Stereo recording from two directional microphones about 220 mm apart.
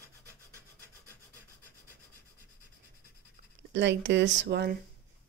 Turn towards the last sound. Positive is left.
turn(degrees=-50)  # may be behind; listen again after turning